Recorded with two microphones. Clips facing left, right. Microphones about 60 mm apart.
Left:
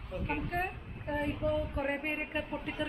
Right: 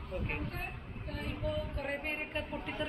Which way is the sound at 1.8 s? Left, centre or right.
Centre.